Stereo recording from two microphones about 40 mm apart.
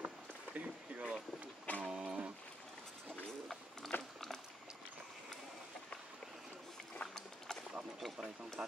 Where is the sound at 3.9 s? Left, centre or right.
Left.